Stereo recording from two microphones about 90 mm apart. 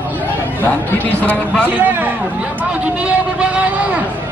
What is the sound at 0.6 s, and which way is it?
A man's voice, 20° left (ahead or behind).